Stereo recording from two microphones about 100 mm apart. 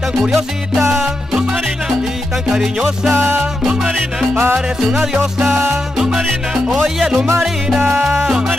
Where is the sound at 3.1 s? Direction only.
25° right (ahead or behind).